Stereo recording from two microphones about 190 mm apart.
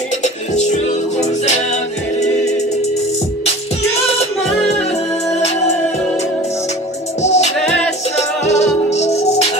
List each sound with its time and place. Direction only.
0.2 s music: 40° left (ahead or behind)
7.2 s music: 35° left (ahead or behind)
8.5 s music: 35° left (ahead or behind)